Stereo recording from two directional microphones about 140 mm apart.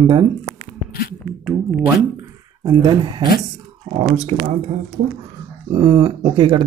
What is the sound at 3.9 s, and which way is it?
Speech, 45° right (ahead or behind).